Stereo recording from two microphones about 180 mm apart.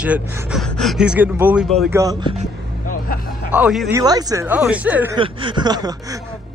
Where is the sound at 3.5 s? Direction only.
5° right (ahead or behind).